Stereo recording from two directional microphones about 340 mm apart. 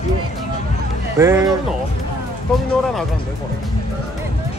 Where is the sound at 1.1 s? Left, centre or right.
Centre.